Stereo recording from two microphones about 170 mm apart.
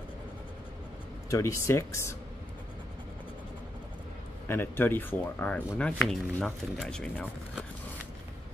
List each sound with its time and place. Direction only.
1.3 s speech: 15° left (ahead or behind)
4.5 s speech: 15° left (ahead or behind)